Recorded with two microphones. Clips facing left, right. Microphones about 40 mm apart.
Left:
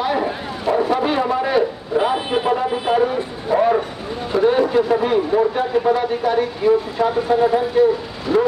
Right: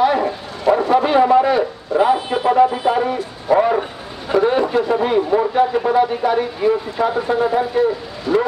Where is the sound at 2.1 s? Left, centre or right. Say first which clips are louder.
Left 1 dB; centre.